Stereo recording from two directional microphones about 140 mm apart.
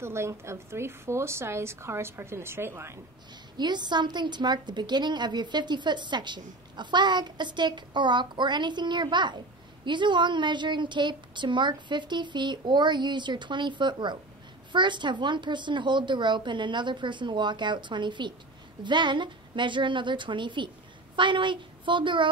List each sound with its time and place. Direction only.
0.0 s a woman's voice: 20° right (ahead or behind)
3.5 s a woman's voice: 30° right (ahead or behind)